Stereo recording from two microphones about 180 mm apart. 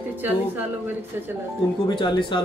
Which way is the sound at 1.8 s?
25° left (ahead or behind).